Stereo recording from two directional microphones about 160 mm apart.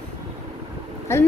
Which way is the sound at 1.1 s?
15° left (ahead or behind).